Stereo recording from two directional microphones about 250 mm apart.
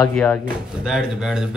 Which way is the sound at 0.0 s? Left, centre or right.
Centre.